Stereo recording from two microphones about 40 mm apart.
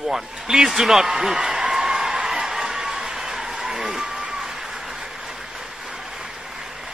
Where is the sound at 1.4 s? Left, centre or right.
Right.